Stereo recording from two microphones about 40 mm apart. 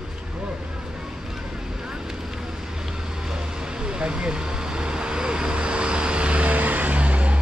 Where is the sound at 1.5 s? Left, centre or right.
Centre.